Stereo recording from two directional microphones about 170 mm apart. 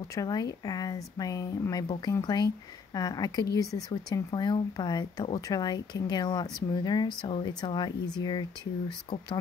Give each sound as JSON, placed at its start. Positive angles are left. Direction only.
{"t": 0.1, "sound": "speech", "side_deg": 20}